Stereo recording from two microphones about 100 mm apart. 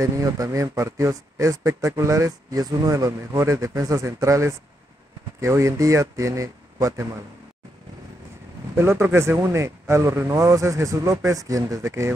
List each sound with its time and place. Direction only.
0.0 s speech: 35° right (ahead or behind)
8.7 s speech: 25° right (ahead or behind)